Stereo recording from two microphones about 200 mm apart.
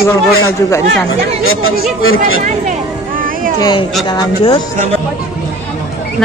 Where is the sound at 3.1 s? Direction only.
45° right (ahead or behind).